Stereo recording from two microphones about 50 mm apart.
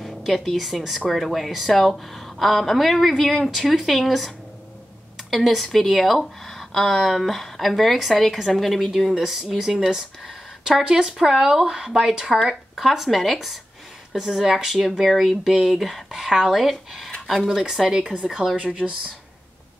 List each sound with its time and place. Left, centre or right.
0.0 s a woman's voice: centre
5.3 s a woman's voice: centre
9.1 s speech: centre
10.8 s a woman's voice: centre
18.8 s speech: centre